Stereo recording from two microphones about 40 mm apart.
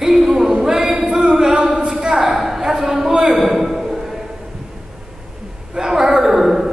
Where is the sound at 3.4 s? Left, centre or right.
Centre.